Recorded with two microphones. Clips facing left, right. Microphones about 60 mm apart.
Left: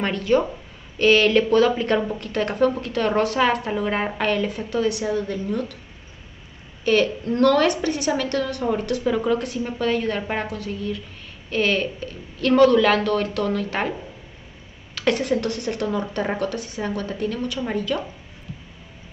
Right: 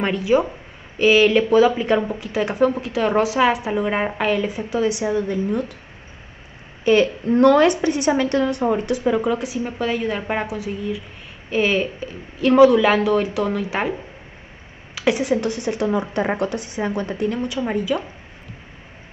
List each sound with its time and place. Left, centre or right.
0.0 s speech: centre
6.8 s speech: centre
15.0 s speech: centre